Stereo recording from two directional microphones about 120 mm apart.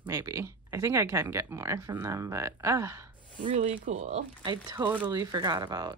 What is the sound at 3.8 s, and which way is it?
Speech, 65° right (ahead or behind).